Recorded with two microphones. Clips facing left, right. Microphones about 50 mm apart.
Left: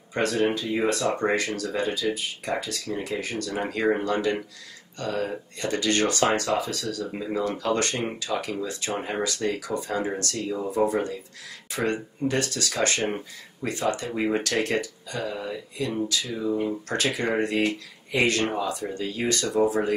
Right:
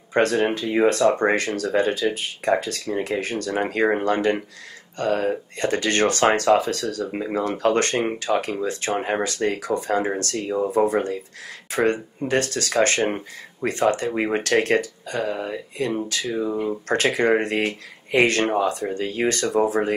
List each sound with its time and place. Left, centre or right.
0.1 s speech: right